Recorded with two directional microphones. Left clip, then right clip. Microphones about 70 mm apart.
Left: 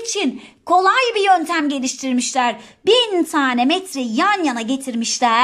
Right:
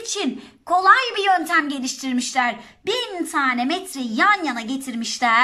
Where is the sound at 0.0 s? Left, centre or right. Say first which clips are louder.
Left 4 dB; left.